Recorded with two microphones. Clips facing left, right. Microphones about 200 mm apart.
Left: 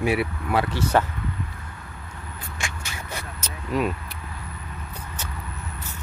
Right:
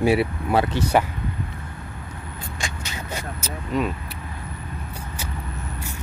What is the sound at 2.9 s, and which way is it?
Vehicle, 20° right (ahead or behind).